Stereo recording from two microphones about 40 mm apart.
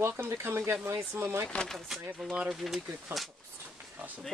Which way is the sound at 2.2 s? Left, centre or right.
Centre.